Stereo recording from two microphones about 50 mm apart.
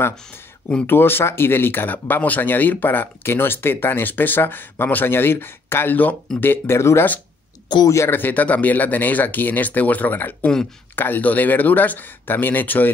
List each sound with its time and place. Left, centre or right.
0.8 s speech: left
6.3 s speech: centre
6.7 s speech: left
8.1 s speech: left